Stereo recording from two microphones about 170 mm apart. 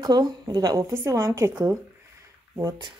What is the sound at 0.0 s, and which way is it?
A woman's voice, 25° right (ahead or behind).